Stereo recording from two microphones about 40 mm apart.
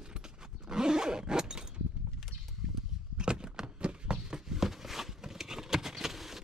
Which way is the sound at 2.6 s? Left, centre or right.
Centre.